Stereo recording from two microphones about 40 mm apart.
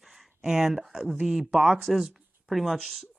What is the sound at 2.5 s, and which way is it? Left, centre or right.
Speech, centre.